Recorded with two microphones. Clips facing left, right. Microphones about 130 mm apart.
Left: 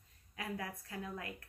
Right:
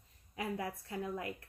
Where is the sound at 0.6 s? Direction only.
25° right (ahead or behind).